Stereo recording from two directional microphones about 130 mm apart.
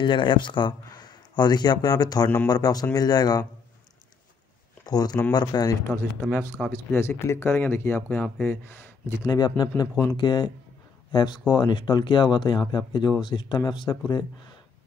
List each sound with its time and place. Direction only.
0.0 s speech: 40° left (ahead or behind)
4.8 s speech: 30° left (ahead or behind)
9.3 s speech: 30° left (ahead or behind)